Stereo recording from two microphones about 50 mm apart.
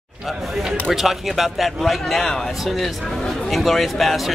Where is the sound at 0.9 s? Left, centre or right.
Centre.